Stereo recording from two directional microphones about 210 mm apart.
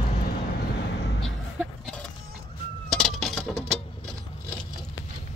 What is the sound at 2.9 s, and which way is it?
Coin, centre (ahead or behind).